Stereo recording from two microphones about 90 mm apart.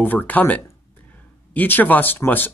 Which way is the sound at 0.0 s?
20° left (ahead or behind).